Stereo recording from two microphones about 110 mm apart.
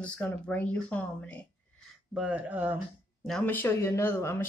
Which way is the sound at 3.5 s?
15° left (ahead or behind).